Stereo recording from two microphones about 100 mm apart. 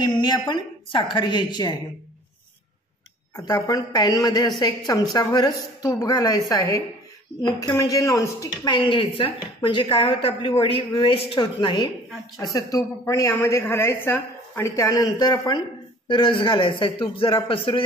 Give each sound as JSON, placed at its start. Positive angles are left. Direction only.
{"t": 0.0, "sound": "a woman's voice", "side_deg": 50}
{"t": 3.3, "sound": "a woman's voice", "side_deg": 40}
{"t": 8.6, "sound": "a woman's voice", "side_deg": 55}
{"t": 12.5, "sound": "a woman's voice", "side_deg": 35}
{"t": 14.8, "sound": "a woman's voice", "side_deg": 35}